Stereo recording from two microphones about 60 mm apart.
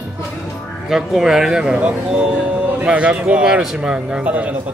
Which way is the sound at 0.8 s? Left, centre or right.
Centre.